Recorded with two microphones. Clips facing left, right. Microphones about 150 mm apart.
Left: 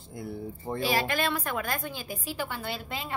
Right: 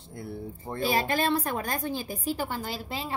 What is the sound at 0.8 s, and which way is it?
A woman's voice, 35° right (ahead or behind).